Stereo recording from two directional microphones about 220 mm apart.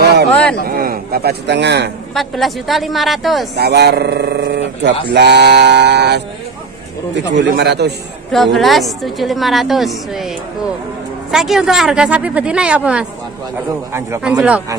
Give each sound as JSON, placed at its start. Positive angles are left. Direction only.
{"t": 0.0, "sound": "a sound", "side_deg": -50}
{"t": 0.3, "sound": "a sound", "side_deg": 5}
{"t": 0.7, "sound": "a man's voice", "side_deg": -40}
{"t": 2.1, "sound": "a woman's voice", "side_deg": 0}
{"t": 3.5, "sound": "speech", "side_deg": -50}
{"t": 7.3, "sound": "speech", "side_deg": -50}
{"t": 8.5, "sound": "a woman's voice", "side_deg": 0}
{"t": 11.3, "sound": "a woman's voice", "side_deg": 0}